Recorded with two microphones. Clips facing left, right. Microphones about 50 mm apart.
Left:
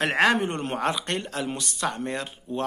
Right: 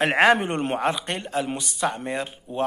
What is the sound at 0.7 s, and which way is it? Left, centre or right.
Speech, centre.